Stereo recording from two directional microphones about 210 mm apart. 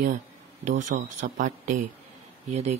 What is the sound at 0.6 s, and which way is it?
Speech, 35° right (ahead or behind).